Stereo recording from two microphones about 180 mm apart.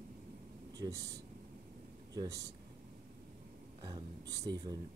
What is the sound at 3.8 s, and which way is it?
Speech, 25° right (ahead or behind).